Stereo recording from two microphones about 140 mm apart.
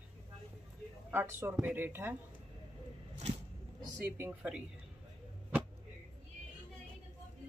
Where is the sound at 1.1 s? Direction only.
15° right (ahead or behind).